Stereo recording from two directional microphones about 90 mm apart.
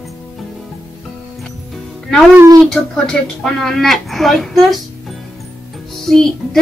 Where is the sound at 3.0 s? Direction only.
5° left (ahead or behind).